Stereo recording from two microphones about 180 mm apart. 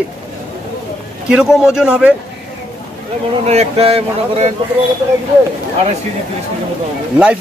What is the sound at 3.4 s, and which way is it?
Speech, 35° right (ahead or behind).